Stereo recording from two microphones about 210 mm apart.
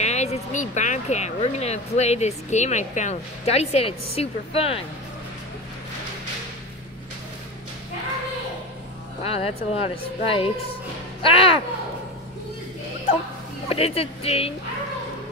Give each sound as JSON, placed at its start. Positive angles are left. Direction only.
{"t": 0.0, "sound": "speech", "side_deg": 30}
{"t": 9.2, "sound": "speech", "side_deg": 30}
{"t": 13.7, "sound": "speech", "side_deg": 30}